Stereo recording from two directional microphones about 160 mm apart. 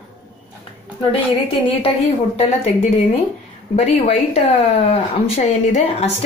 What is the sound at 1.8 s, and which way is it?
Speech, 40° left (ahead or behind).